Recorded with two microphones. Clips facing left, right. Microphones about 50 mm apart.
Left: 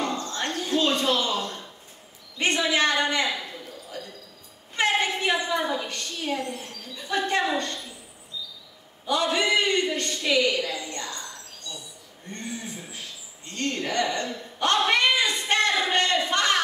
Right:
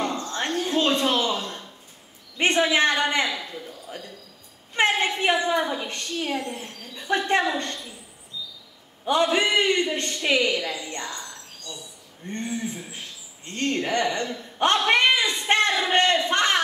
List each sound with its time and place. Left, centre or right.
0.0 s a sound: right
2.3 s a woman's voice: right
4.7 s a woman's voice: right
9.0 s a woman's voice: right
12.2 s a woman's voice: right
13.5 s a sound: right